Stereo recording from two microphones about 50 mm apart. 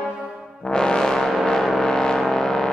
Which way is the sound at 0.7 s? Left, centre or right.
Centre.